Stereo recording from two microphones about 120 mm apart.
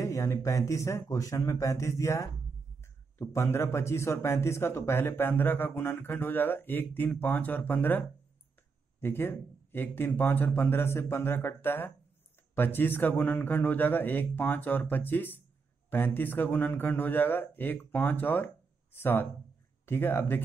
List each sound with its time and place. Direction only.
0.0 s a man's voice: 25° left (ahead or behind)